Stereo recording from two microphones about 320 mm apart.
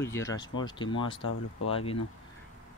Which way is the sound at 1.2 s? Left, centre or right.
Left.